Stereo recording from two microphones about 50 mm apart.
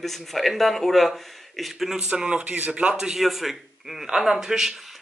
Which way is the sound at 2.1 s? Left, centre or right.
Centre.